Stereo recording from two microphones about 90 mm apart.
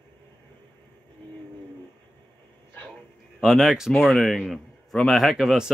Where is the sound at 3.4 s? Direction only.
Centre (ahead or behind).